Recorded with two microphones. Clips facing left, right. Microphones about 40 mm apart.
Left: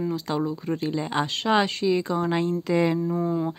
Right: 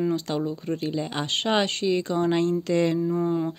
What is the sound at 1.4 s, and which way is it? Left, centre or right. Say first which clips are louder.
Speech: left 1 dB; centre.